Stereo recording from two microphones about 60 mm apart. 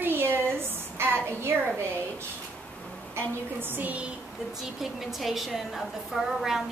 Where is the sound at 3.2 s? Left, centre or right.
Right.